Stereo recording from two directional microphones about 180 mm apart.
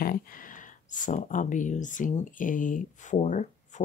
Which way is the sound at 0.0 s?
55° left (ahead or behind).